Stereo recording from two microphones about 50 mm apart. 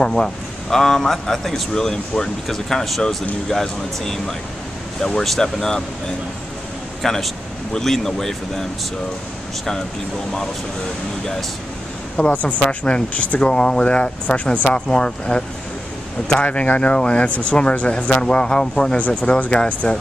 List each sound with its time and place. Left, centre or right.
0.0 s a man's voice: centre
7.0 s a man's voice: centre
12.2 s speech: left
12.6 s a man's voice: centre
16.4 s speech: left
18.9 s speech: left